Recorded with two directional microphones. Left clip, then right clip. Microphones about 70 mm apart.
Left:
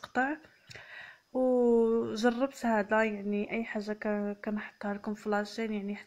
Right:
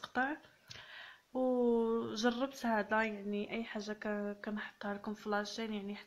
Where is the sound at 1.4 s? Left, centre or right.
Left.